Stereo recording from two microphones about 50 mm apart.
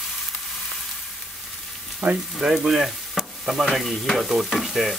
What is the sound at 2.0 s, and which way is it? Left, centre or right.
Speech, centre.